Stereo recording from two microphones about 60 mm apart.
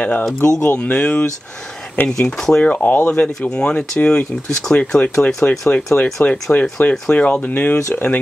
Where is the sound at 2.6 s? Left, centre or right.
Left.